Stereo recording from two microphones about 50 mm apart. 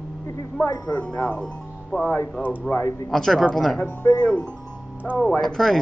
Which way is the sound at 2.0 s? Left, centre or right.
Left.